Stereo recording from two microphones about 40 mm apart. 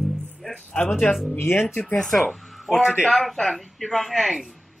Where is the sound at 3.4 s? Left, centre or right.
Centre.